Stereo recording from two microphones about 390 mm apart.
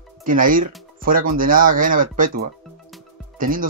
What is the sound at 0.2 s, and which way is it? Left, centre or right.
Speech, right.